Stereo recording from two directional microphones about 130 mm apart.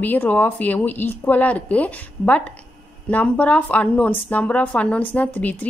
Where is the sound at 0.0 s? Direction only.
15° left (ahead or behind).